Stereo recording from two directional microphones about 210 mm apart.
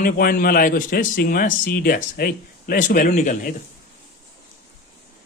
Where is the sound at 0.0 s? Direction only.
45° left (ahead or behind).